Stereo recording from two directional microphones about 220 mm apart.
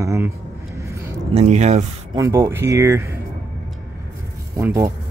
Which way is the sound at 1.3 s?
30° right (ahead or behind).